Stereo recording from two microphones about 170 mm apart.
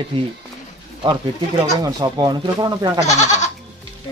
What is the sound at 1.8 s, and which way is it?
Speech, 25° right (ahead or behind).